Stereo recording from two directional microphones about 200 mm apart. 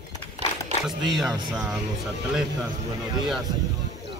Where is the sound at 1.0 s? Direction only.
Centre (ahead or behind).